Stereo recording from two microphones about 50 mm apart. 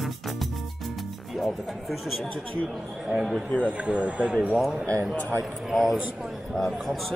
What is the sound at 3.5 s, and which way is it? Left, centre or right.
Speech, right.